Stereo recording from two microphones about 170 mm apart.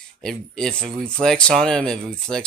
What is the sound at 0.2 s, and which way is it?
Speech, 5° left (ahead or behind).